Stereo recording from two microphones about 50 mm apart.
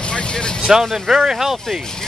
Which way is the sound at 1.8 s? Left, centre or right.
Centre.